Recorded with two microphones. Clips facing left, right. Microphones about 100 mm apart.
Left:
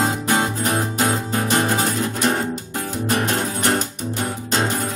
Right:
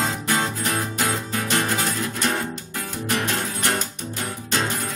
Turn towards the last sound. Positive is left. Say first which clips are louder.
# left 4 dB
turn(degrees=35)  # may be behind; listen again after turning